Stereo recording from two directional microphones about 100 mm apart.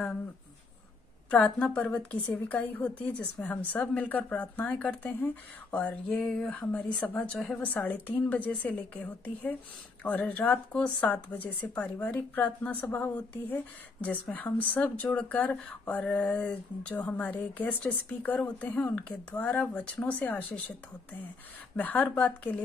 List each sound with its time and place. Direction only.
1.3 s speech: 10° left (ahead or behind)